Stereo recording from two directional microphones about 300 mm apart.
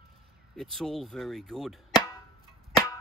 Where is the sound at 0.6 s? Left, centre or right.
Centre.